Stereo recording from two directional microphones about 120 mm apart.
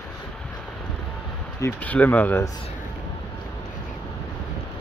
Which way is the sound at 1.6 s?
15° left (ahead or behind).